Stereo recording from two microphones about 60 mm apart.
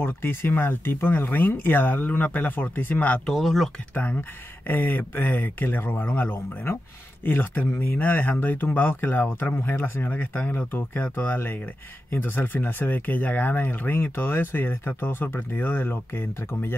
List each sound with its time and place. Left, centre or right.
0.0 s speech: left
3.3 s speech: centre
3.9 s speech: left